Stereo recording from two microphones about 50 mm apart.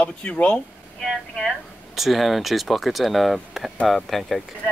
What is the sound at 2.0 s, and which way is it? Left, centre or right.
Speech, centre.